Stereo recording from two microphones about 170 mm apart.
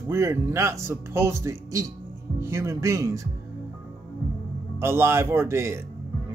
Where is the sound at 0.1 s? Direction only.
15° right (ahead or behind).